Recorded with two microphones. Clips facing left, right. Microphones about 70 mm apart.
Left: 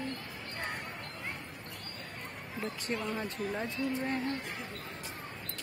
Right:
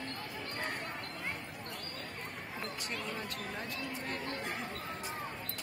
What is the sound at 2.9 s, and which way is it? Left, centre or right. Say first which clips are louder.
Speech: left 7 dB; left.